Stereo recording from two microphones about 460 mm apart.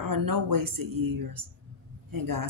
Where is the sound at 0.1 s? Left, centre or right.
Right.